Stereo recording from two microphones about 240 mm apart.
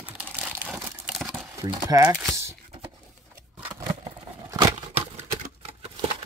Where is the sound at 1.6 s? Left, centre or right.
Centre.